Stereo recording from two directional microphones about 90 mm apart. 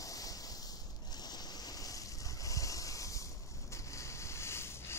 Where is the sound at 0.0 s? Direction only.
40° left (ahead or behind).